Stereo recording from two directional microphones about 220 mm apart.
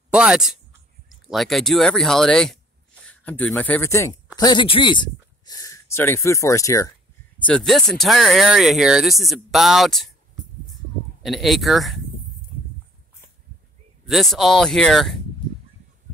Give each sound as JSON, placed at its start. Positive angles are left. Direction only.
{"t": 0.1, "sound": "speech", "side_deg": -5}
{"t": 7.4, "sound": "speech", "side_deg": 0}
{"t": 11.2, "sound": "speech", "side_deg": 0}
{"t": 12.5, "sound": "a sound", "side_deg": -45}
{"t": 14.0, "sound": "speech", "side_deg": 0}